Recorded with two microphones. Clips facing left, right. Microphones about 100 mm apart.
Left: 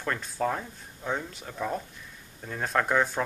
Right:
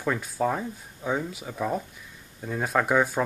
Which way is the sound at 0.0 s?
5° right (ahead or behind).